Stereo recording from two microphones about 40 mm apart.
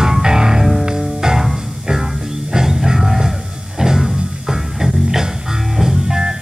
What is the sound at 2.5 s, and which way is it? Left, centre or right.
Music, centre.